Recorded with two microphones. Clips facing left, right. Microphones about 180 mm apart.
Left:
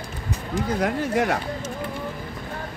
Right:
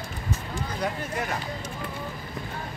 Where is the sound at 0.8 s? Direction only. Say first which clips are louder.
Left 7 dB; 90° left.